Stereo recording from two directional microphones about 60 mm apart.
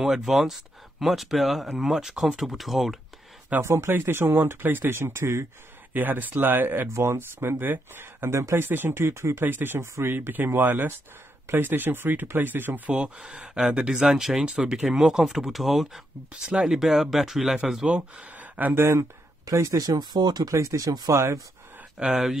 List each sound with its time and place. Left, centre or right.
0.0 s speech: centre
3.6 s speech: right
4.9 s speech: right
5.9 s speech: right
6.9 s speech: right
8.5 s speech: right
9.4 s speech: right
12.9 s speech: centre
16.3 s speech: centre
17.8 s speech: centre
18.8 s speech: right
19.4 s speech: right
21.9 s speech: centre